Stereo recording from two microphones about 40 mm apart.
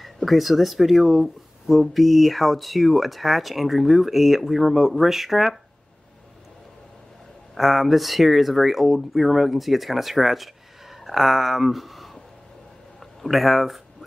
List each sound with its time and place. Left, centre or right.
0.0 s speech: centre
7.5 s speech: centre